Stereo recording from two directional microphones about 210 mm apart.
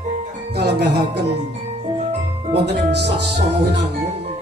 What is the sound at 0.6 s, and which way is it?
Music, 50° right (ahead or behind).